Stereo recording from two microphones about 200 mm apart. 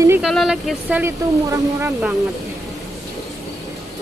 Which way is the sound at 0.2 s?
Centre (ahead or behind).